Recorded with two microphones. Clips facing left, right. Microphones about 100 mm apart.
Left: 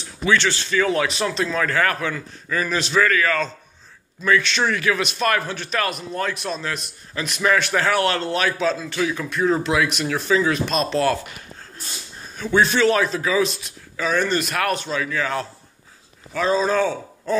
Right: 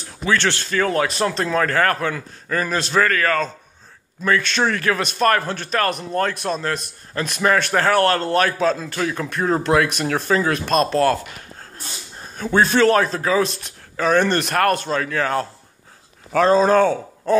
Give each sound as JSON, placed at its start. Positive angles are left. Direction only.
{"t": 0.4, "sound": "a man's voice", "side_deg": -55}
{"t": 0.7, "sound": "a man's voice", "side_deg": -45}
{"t": 12.4, "sound": "a man's voice", "side_deg": -45}
{"t": 13.5, "sound": "a man's voice", "side_deg": -60}